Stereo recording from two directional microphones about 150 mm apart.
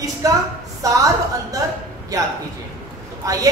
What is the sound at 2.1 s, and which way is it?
A woman's voice, 20° right (ahead or behind).